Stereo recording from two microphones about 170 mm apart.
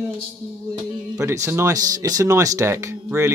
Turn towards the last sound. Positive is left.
turn(degrees=-15)  # may be behind; listen again after turning